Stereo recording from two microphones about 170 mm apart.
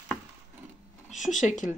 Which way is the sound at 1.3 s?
45° left (ahead or behind).